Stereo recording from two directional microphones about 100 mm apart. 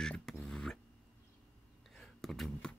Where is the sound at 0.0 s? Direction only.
5° left (ahead or behind).